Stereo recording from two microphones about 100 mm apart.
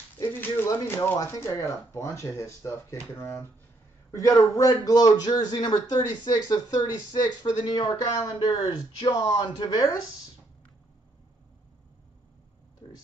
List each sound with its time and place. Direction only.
0.3 s a sound: 20° left (ahead or behind)
0.7 s speech: 25° left (ahead or behind)
1.1 s speech: 40° left (ahead or behind)
8.1 s speech: 30° left (ahead or behind)
8.5 s speech: 45° left (ahead or behind)
12.8 s a sound: 50° left (ahead or behind)